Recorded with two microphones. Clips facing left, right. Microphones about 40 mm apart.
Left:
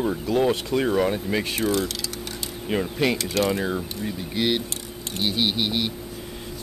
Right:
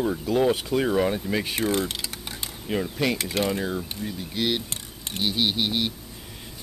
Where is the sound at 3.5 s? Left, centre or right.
Centre.